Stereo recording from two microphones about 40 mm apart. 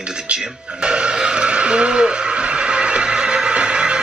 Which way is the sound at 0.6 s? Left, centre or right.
Right.